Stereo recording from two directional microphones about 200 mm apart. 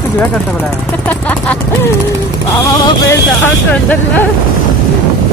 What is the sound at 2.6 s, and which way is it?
Speech, 15° left (ahead or behind).